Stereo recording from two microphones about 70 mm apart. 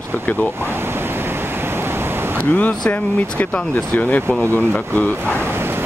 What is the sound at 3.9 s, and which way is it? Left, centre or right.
Speech, left.